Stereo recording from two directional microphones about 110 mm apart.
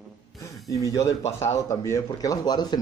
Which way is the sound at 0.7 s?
30° left (ahead or behind).